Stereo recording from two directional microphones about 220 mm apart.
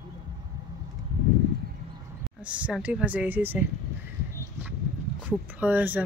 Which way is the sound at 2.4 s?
5° right (ahead or behind).